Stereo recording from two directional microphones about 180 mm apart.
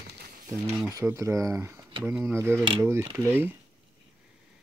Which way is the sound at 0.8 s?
15° right (ahead or behind).